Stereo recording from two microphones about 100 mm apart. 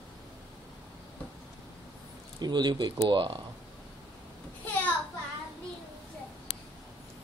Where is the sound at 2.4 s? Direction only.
45° right (ahead or behind).